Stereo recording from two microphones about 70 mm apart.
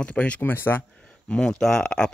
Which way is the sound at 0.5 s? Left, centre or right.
Left.